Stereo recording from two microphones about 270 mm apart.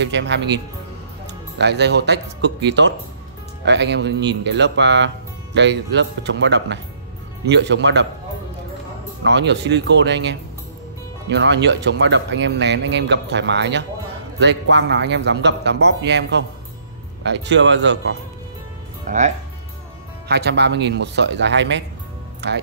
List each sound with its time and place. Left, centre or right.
0.0 s speech: right
9.2 s speech: right
19.0 s speech: right
20.2 s speech: right